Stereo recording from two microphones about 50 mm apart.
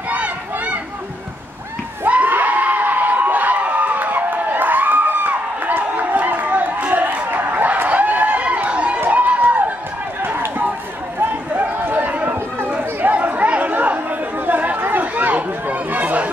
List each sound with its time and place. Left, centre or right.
0.1 s a sound: right
2.0 s crowd: right
7.5 s run: right
11.1 s run: right
14.4 s chatter: right